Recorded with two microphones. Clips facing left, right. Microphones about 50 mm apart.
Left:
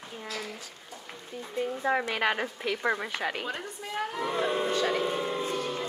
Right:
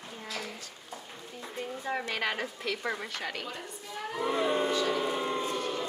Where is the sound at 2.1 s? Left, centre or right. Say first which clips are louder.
Left 4 dB; centre.